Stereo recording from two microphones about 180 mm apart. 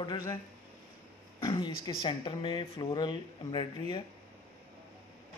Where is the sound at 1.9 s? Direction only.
25° left (ahead or behind).